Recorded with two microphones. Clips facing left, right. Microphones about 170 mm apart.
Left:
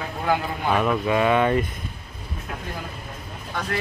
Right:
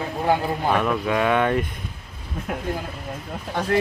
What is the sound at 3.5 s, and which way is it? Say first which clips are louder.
Speech: right 6 dB; 35° right (ahead or behind).